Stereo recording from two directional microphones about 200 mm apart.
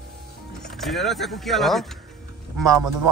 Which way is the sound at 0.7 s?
Centre (ahead or behind).